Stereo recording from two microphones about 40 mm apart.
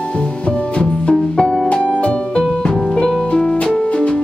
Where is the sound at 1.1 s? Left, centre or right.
Left.